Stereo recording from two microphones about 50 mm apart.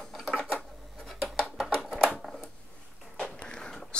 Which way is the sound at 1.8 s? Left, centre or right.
Centre.